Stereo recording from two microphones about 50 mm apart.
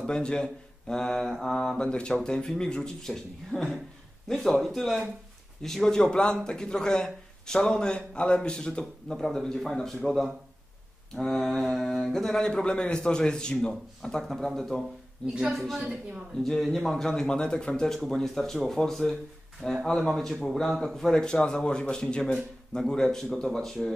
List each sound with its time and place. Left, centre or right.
0.0 s a man's voice: centre
1.9 s a man's voice: centre
4.3 s speech: centre
5.6 s a man's voice: centre
9.2 s a man's voice: centre
16.4 s a man's voice: centre
17.9 s a man's voice: centre